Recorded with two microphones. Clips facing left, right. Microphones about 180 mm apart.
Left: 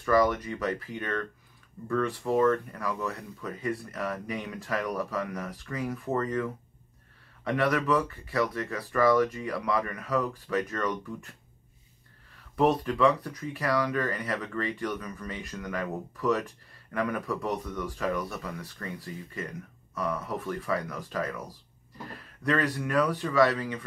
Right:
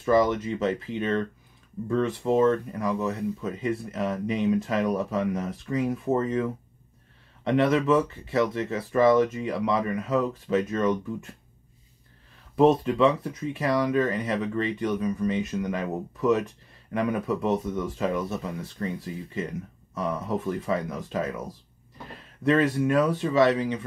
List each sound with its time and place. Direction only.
0.0 s speech: 25° right (ahead or behind)
12.5 s speech: 25° right (ahead or behind)